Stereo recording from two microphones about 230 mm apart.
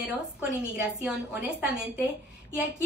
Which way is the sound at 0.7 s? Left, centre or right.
Centre.